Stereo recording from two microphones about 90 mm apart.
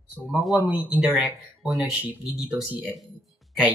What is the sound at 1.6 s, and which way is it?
Speech, 5° right (ahead or behind).